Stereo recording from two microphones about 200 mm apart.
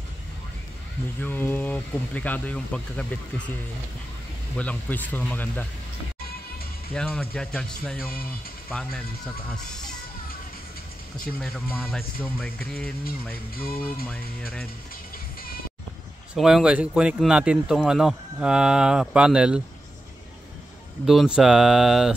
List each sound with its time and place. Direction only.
1.2 s speech: 10° left (ahead or behind)
4.6 s speech: 10° left (ahead or behind)
6.9 s speech: 5° left (ahead or behind)
8.0 s music: 50° left (ahead or behind)
8.6 s speech: 5° left (ahead or behind)
11.4 s speech: 5° left (ahead or behind)
13.3 s music: 50° left (ahead or behind)
16.3 s speech: centre (ahead or behind)
21.0 s speech: centre (ahead or behind)